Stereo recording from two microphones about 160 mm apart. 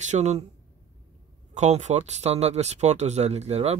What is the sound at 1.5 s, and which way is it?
Speech, 45° right (ahead or behind).